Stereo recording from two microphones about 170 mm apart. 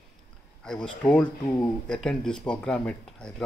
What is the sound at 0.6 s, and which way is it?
Speech, 5° left (ahead or behind).